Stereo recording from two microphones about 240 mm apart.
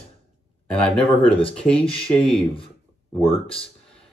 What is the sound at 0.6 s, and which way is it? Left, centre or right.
Speech, centre.